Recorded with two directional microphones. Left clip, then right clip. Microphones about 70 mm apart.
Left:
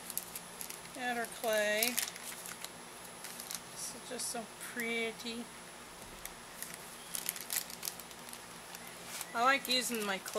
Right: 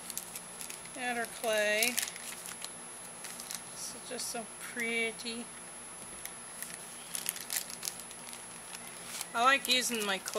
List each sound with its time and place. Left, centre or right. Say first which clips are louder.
0.9 s speech: right 2 dB; right
3.8 s speech: right 2 dB; right
7.1 s crushing: right 2 dB; centre
9.3 s speech: right 3 dB; right